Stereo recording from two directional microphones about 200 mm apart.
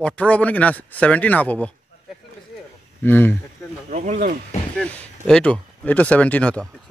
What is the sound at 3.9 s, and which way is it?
Speech, 40° right (ahead or behind).